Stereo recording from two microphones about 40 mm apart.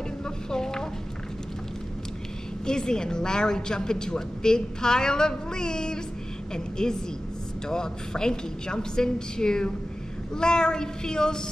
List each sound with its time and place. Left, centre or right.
0.2 s vehicle: centre
2.6 s a woman's voice: centre